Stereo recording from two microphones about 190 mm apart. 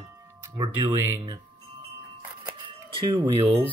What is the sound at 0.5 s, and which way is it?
Speech, 20° right (ahead or behind).